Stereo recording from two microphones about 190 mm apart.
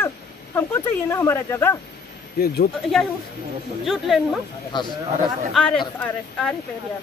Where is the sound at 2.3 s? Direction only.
50° left (ahead or behind).